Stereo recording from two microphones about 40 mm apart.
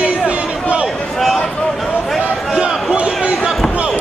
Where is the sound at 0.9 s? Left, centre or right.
Centre.